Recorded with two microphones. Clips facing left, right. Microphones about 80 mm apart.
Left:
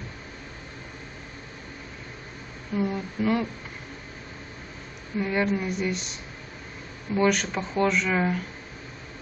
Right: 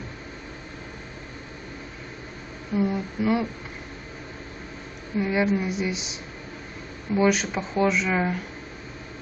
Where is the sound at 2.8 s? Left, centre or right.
Centre.